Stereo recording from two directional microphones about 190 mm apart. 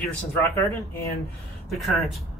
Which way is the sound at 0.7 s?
10° left (ahead or behind).